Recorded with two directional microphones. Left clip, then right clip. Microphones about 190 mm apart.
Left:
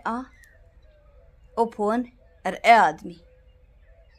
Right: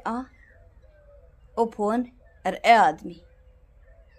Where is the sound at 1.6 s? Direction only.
15° left (ahead or behind).